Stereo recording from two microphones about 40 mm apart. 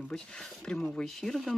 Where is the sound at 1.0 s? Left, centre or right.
Centre.